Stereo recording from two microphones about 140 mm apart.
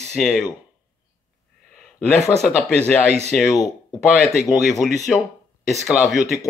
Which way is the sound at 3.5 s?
25° left (ahead or behind).